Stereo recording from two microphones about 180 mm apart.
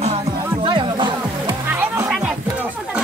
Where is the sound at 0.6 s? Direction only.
25° right (ahead or behind).